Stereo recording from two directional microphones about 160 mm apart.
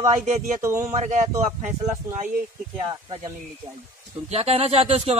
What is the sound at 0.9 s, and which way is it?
Speech, 50° right (ahead or behind).